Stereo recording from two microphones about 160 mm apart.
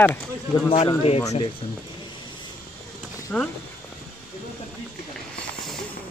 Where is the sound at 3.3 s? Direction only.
5° left (ahead or behind).